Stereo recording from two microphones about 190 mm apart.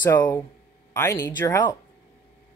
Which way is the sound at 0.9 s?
15° left (ahead or behind).